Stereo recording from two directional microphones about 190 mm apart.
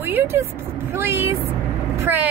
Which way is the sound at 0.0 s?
10° right (ahead or behind).